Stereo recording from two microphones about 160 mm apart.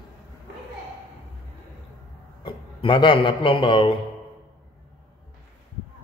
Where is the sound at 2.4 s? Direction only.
30° left (ahead or behind).